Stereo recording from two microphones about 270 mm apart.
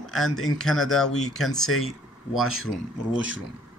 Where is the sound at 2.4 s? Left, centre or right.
Right.